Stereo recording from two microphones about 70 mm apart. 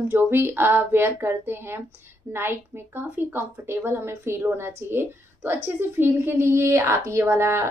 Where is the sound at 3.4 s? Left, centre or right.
Right.